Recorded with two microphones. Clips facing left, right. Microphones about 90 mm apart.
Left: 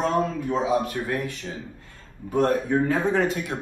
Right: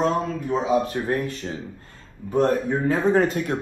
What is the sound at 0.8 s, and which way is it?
Speech, 35° right (ahead or behind).